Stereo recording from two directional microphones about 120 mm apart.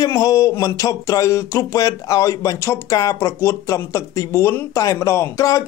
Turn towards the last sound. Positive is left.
turn(degrees=25)  # may be behind; listen again after turning